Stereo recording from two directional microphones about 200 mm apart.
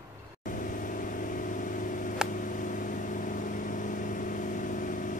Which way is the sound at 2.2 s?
40° left (ahead or behind).